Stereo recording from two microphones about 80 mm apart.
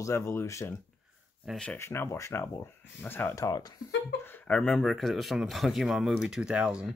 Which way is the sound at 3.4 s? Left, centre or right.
Left.